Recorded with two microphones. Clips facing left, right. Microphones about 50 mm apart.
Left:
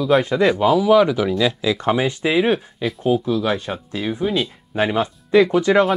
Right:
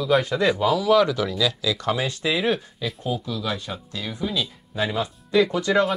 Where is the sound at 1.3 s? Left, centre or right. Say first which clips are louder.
Left 5 dB; left.